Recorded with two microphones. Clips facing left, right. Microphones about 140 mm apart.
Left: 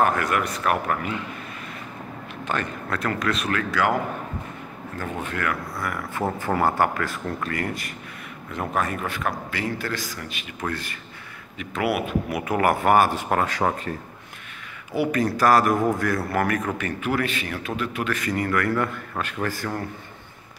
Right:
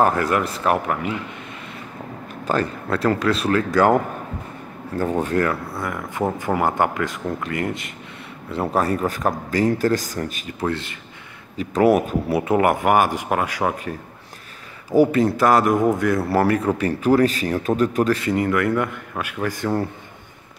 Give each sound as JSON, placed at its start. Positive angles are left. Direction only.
{"t": 0.0, "sound": "speech", "side_deg": -25}
{"t": 2.4, "sound": "speech", "side_deg": -30}
{"t": 8.5, "sound": "speech", "side_deg": -35}
{"t": 10.7, "sound": "speech", "side_deg": -25}
{"t": 11.5, "sound": "speech", "side_deg": -40}
{"t": 14.9, "sound": "speech", "side_deg": -35}
{"t": 15.1, "sound": "speech", "side_deg": -25}